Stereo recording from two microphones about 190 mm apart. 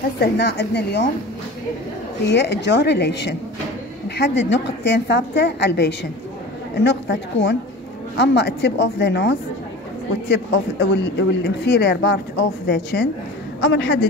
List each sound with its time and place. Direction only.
0.2 s speech: 60° left (ahead or behind)
2.2 s a woman's voice: 65° left (ahead or behind)
8.2 s speech: 65° left (ahead or behind)
10.3 s a woman's voice: 70° left (ahead or behind)